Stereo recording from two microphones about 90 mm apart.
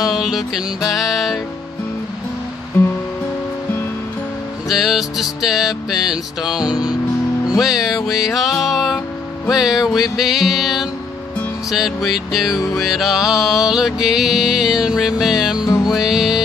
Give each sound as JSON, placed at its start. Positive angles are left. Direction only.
{"t": 0.1, "sound": "music", "side_deg": -5}
{"t": 2.8, "sound": "music", "side_deg": 30}
{"t": 4.6, "sound": "music", "side_deg": -5}